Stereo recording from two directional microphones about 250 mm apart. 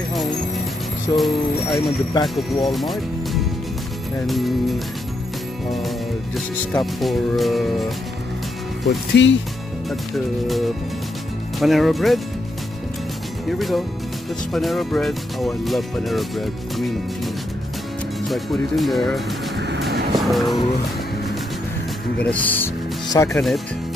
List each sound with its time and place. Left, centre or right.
1.1 s speech: centre
6.3 s speech: centre
8.8 s speech: left
9.8 s speech: centre
13.5 s speech: centre
18.3 s speech: centre
19.5 s music: right
20.2 s music: centre
22.2 s speech: centre